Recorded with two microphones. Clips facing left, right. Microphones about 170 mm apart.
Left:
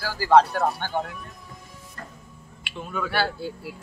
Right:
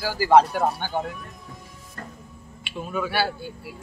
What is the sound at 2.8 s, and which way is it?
Speech, 5° right (ahead or behind).